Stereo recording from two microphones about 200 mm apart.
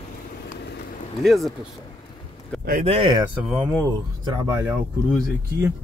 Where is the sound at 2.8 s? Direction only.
25° right (ahead or behind).